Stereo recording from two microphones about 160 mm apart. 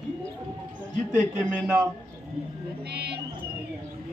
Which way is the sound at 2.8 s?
90° right.